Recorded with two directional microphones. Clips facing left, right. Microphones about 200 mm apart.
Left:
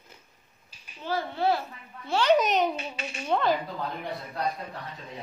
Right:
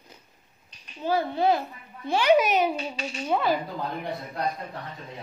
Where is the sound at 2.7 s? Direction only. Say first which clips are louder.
Right 4 dB; 30° right (ahead or behind).